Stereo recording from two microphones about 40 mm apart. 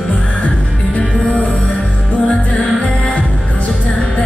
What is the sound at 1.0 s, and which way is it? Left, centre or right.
Music, left.